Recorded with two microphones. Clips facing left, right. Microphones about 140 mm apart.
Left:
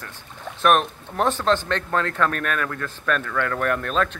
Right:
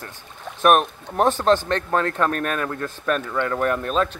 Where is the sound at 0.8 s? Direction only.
15° right (ahead or behind).